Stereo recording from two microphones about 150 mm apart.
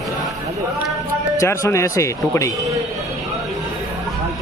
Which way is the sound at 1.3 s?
20° left (ahead or behind).